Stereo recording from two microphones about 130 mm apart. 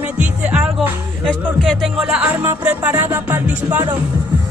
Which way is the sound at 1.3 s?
5° left (ahead or behind).